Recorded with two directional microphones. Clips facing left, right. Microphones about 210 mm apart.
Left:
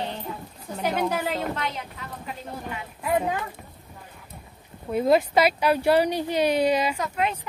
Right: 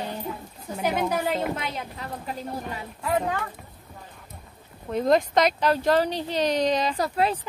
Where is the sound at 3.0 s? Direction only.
10° left (ahead or behind).